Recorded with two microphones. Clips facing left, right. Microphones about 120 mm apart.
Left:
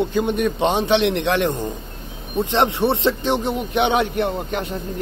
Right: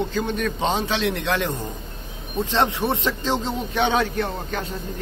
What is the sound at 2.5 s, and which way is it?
A man's voice, 25° left (ahead or behind).